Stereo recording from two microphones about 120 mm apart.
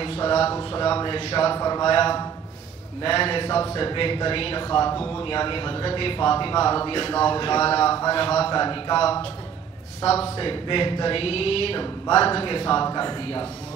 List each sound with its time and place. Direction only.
0.0 s speech: 50° left (ahead or behind)
0.6 s a man's voice: 45° left (ahead or behind)
1.6 s a man's voice: 35° left (ahead or behind)
10.3 s a man's voice: 45° left (ahead or behind)